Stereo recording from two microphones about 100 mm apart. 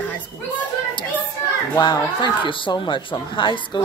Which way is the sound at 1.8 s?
50° left (ahead or behind).